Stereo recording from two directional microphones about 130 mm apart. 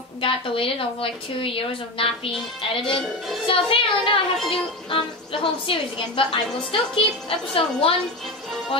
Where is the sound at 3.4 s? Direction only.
40° left (ahead or behind).